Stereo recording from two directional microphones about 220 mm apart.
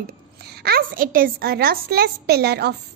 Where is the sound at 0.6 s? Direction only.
45° right (ahead or behind).